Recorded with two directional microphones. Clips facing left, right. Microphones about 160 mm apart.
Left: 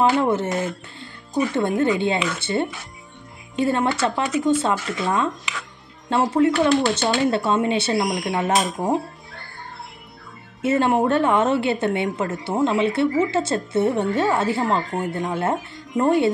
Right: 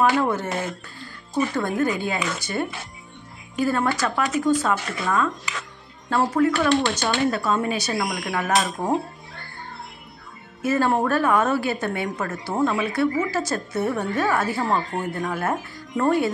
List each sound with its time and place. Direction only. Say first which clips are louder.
0.2 s a woman's voice: left 3 dB; 25° left (ahead or behind)
1.5 s a woman's voice: left 3 dB; 25° left (ahead or behind)
10.6 s a woman's voice: left 2 dB; 25° left (ahead or behind)